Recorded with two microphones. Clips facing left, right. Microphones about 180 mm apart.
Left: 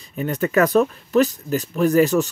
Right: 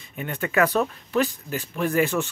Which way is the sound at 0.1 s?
40° left (ahead or behind).